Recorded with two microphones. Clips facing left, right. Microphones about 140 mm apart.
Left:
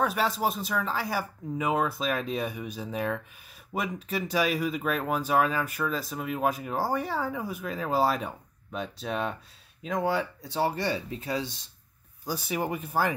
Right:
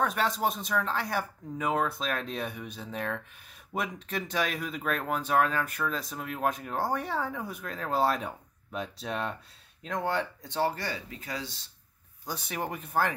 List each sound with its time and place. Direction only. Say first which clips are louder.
0.0 s speech: left 1 dB; 5° left (ahead or behind)
10.8 s speech: left 7 dB; 25° left (ahead or behind)
12.3 s speech: left 4 dB; 5° left (ahead or behind)